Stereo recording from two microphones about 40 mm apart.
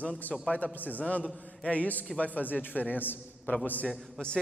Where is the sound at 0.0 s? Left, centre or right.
Left.